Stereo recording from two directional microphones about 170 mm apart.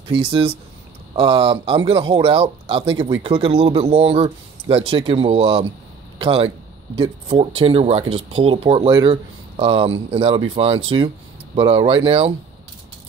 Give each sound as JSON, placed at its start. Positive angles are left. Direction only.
{"t": 0.1, "sound": "speech", "side_deg": -30}